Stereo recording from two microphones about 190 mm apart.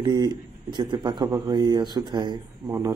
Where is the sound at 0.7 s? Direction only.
20° right (ahead or behind).